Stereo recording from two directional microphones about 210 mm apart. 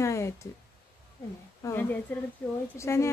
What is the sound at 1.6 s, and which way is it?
A woman's voice, 10° left (ahead or behind).